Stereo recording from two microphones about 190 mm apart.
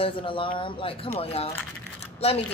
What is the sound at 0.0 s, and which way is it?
Speech, 25° left (ahead or behind).